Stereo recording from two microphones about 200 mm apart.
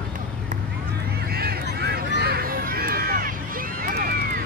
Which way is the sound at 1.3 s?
50° right (ahead or behind).